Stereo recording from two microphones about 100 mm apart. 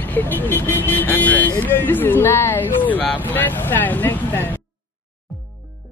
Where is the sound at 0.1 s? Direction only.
20° left (ahead or behind).